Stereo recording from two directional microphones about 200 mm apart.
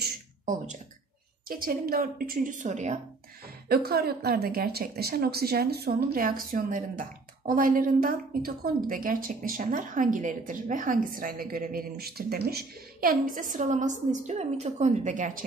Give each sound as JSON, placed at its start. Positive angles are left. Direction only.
{"t": 0.0, "sound": "a sound", "side_deg": -40}
{"t": 1.5, "sound": "speech", "side_deg": -45}
{"t": 3.6, "sound": "speech", "side_deg": -50}